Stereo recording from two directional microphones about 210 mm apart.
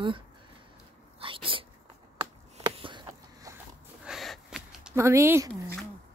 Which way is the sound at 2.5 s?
25° right (ahead or behind).